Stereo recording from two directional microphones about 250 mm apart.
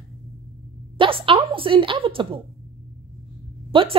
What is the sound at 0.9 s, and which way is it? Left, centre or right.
A woman's voice, right.